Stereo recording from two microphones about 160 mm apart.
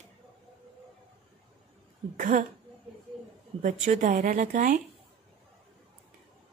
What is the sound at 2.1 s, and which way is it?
Speech, 55° right (ahead or behind).